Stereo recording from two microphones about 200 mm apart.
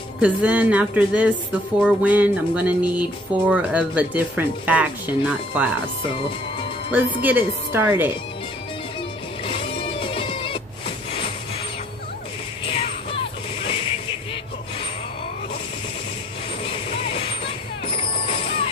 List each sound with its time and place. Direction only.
0.2 s speech: 5° right (ahead or behind)
7.2 s speech: 10° right (ahead or behind)
9.5 s music: 25° left (ahead or behind)
12.6 s music: 25° left (ahead or behind)
16.6 s vehicle: 30° left (ahead or behind)
17.9 s music: 30° left (ahead or behind)